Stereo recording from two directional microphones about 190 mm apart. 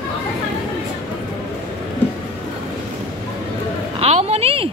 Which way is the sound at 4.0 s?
35° right (ahead or behind).